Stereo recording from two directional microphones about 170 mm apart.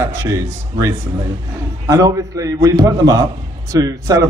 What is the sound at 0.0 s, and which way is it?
A man's voice, 15° right (ahead or behind).